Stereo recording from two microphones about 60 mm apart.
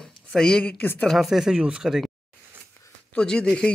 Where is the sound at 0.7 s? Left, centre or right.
Left.